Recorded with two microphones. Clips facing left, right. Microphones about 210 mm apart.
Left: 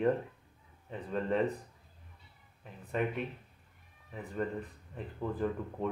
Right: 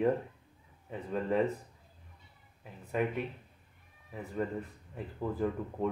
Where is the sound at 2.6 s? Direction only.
5° right (ahead or behind).